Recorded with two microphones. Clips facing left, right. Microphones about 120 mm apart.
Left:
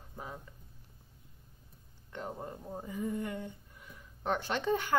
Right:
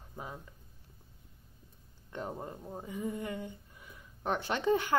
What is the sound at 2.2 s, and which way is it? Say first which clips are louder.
Speech: left 1 dB; 5° right (ahead or behind).